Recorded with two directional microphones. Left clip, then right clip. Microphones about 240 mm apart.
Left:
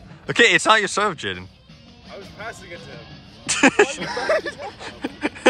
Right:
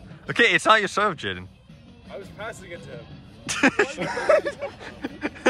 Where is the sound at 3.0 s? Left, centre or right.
Centre.